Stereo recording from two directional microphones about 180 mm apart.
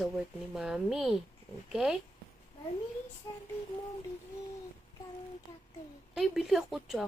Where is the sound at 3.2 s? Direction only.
20° left (ahead or behind).